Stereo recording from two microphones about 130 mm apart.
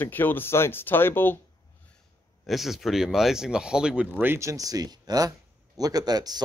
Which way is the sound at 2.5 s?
Centre (ahead or behind).